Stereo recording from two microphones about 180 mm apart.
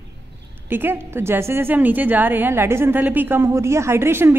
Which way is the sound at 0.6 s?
10° right (ahead or behind).